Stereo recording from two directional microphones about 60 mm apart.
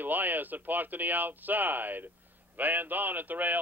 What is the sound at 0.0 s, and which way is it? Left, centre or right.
A man's voice, right.